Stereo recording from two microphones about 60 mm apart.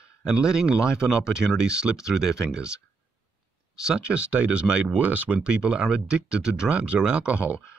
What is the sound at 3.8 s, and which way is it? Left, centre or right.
Speech, centre.